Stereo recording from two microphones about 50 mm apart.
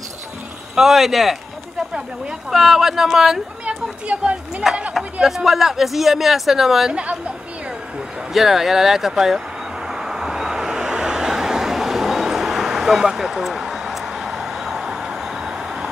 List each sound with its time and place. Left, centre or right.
0.7 s speech: centre
2.5 s speech: centre
3.6 s speech: right
5.2 s speech: centre
6.9 s speech: right
8.3 s speech: centre
9.8 s vehicle: centre